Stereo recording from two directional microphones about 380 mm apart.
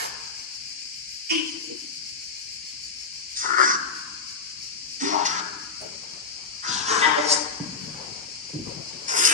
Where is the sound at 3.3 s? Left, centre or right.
Right.